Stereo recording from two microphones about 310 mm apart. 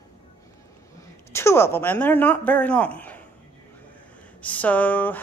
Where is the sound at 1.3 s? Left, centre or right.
Centre.